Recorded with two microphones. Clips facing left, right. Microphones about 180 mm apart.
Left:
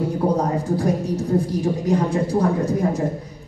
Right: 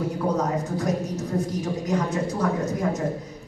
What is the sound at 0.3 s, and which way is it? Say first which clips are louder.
A woman's voice: left 4 dB; 30° left (ahead or behind).